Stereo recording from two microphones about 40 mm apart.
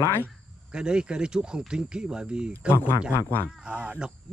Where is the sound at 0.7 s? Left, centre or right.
Right.